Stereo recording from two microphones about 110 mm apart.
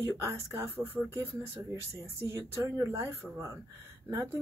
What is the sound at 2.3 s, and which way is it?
Speech, 25° right (ahead or behind).